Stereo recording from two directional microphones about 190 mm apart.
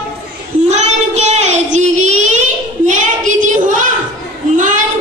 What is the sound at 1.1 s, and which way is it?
Child singing, 35° right (ahead or behind).